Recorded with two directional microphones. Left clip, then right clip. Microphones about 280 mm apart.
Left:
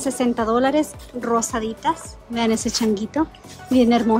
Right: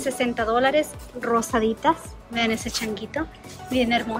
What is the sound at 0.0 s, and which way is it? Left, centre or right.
A woman's voice, centre.